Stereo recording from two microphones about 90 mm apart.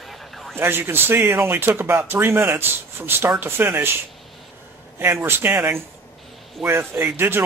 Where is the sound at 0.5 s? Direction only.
25° right (ahead or behind).